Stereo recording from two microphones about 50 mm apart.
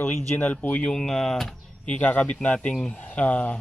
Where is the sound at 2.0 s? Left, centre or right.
Left.